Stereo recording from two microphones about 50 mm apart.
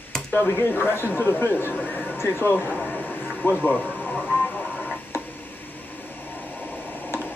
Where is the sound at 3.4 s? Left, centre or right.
Left.